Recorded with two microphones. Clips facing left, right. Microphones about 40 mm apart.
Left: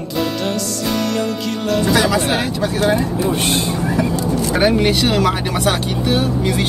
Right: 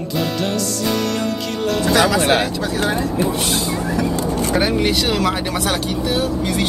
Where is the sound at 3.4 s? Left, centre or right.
Left.